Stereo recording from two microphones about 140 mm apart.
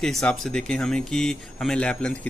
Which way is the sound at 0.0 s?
5° left (ahead or behind).